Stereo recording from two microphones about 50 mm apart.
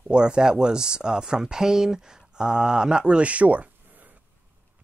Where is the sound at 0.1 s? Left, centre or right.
Centre.